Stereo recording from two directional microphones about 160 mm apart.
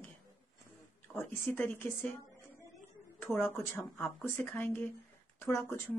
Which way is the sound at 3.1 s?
15° left (ahead or behind).